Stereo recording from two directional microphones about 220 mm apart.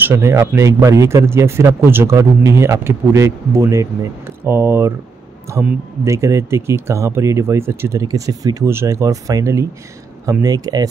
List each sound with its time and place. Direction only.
0.0 s speech: 10° right (ahead or behind)